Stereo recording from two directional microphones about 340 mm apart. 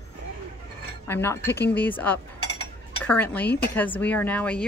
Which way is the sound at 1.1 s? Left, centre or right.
Centre.